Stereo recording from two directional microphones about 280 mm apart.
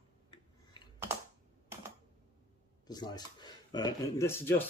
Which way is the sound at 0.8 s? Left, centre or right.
Centre.